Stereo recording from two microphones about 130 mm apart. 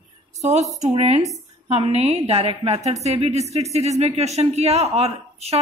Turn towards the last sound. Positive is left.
turn(degrees=-55)  # may be behind; listen again after turning